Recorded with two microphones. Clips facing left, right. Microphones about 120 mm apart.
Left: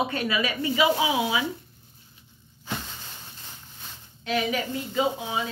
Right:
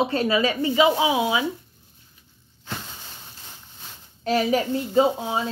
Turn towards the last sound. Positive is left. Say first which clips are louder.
# right 6 dB
turn(degrees=-35)  # may be behind; listen again after turning